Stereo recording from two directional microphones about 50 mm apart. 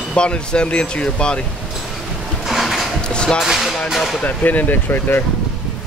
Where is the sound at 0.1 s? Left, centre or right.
Left.